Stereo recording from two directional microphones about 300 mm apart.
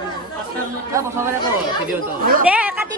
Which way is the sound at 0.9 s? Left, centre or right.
Centre.